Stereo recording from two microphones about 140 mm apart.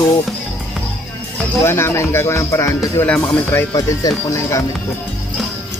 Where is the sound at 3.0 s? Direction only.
15° left (ahead or behind).